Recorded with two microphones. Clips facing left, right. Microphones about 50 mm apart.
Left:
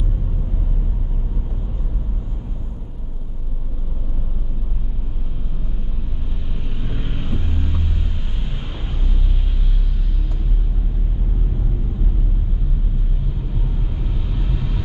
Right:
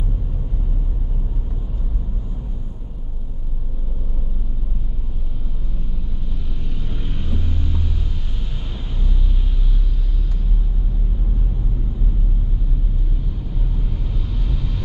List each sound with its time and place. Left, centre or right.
6.7 s vehicle: left
14.1 s vehicle: centre